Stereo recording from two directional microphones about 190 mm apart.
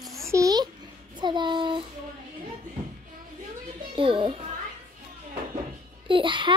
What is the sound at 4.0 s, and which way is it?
Music, 25° right (ahead or behind).